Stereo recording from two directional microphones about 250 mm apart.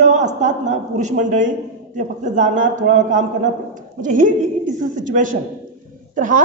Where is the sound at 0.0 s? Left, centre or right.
Right.